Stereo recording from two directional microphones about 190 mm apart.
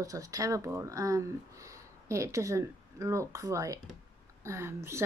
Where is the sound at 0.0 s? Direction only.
15° right (ahead or behind).